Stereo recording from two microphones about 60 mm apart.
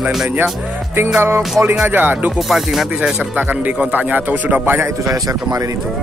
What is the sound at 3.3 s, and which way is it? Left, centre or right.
Speech, right.